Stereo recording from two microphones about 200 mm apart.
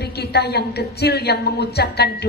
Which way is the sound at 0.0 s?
55° left (ahead or behind).